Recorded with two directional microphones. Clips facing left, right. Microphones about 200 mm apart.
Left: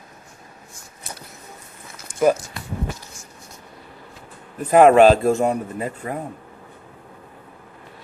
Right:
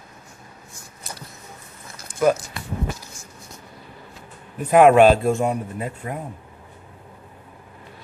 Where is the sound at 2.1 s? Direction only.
10° left (ahead or behind).